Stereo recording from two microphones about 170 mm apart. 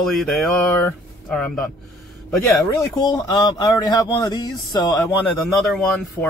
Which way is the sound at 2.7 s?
20° left (ahead or behind).